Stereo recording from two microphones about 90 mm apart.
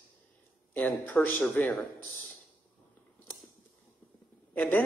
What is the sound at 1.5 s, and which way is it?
Speech, 15° left (ahead or behind).